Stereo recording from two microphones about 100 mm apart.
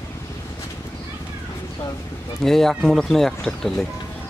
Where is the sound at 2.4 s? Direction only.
5° left (ahead or behind).